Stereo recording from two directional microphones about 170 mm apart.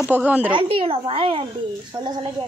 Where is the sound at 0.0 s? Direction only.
5° right (ahead or behind).